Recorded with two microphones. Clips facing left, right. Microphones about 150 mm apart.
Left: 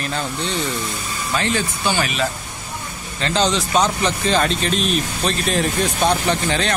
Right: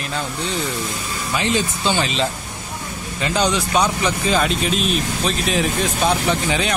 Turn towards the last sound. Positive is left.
turn(degrees=-10)  # may be behind; listen again after turning